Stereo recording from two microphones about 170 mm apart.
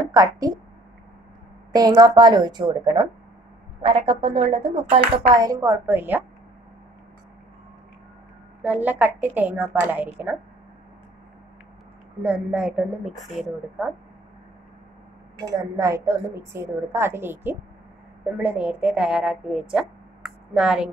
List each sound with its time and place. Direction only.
0.1 s a woman's voice: 20° right (ahead or behind)
1.7 s a woman's voice: 25° right (ahead or behind)
5.3 s a woman's voice: 20° right (ahead or behind)
8.6 s a woman's voice: 10° right (ahead or behind)
12.2 s a woman's voice: 5° right (ahead or behind)
15.3 s a woman's voice: 20° right (ahead or behind)